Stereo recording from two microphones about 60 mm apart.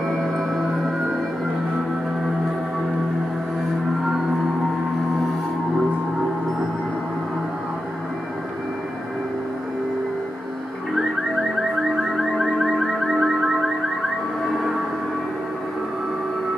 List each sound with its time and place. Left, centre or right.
12.0 s music: centre